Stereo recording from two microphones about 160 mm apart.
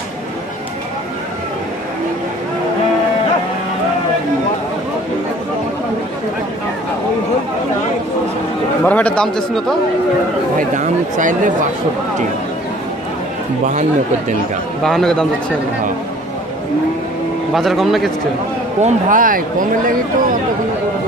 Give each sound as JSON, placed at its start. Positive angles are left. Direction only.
{"t": 8.8, "sound": "speech", "side_deg": 10}
{"t": 10.6, "sound": "speech", "side_deg": -55}
{"t": 14.8, "sound": "a man's voice", "side_deg": 5}
{"t": 17.6, "sound": "a man's voice", "side_deg": 0}
{"t": 18.8, "sound": "speech", "side_deg": -50}